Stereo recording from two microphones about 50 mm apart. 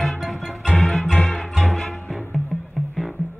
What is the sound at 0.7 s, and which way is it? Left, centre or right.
Music, centre.